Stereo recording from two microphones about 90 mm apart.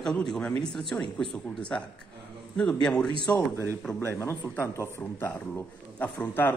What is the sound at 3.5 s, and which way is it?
Speech, 30° left (ahead or behind).